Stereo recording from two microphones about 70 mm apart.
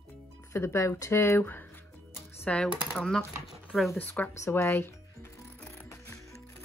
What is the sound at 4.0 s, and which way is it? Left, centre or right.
Speech, left.